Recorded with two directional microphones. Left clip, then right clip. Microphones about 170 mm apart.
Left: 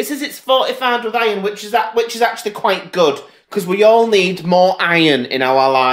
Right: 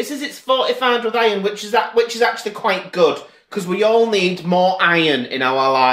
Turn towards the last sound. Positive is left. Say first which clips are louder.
# left 2 dB
turn(degrees=25)  # may be behind; listen again after turning